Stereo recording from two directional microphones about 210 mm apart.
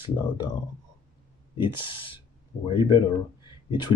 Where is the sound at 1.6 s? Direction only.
25° left (ahead or behind).